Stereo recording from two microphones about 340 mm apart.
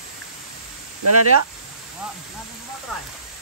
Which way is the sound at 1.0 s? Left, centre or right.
Right.